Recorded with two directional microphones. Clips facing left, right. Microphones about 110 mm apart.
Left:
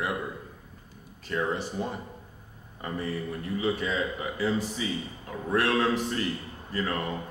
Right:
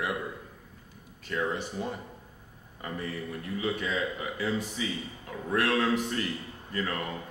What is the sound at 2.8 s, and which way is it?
A man's voice, 30° left (ahead or behind).